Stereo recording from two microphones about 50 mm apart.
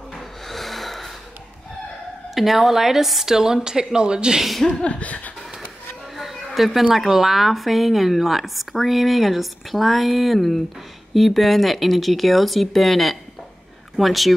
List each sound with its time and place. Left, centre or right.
0.1 s a sound: centre
2.3 s a woman's voice: centre
4.8 s speech: left
6.1 s a woman's voice: centre